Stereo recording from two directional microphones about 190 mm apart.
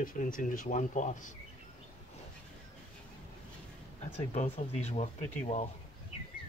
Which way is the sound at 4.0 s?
35° left (ahead or behind).